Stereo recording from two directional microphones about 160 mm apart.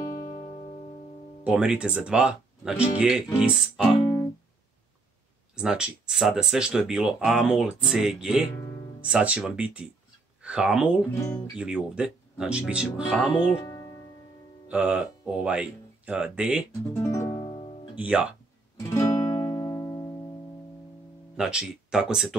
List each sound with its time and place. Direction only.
0.0 s music: 25° left (ahead or behind)
1.4 s speech: 10° right (ahead or behind)
5.6 s speech: 5° right (ahead or behind)
13.5 s speech: 25° left (ahead or behind)
14.7 s speech: 5° right (ahead or behind)
17.0 s music: 20° left (ahead or behind)
17.9 s speech: 5° right (ahead or behind)
18.8 s music: 20° left (ahead or behind)
21.4 s speech: 5° right (ahead or behind)